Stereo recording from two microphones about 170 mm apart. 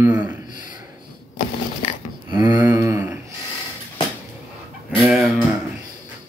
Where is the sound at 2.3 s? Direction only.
25° right (ahead or behind).